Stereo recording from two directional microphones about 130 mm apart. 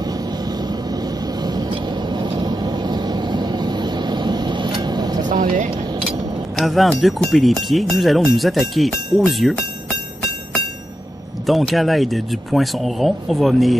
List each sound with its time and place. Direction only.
0.0 s vehicle: 30° right (ahead or behind)
5.3 s speech: 90° right
6.0 s chink: centre (ahead or behind)
7.0 s speech: centre (ahead or behind)
11.4 s speech: centre (ahead or behind)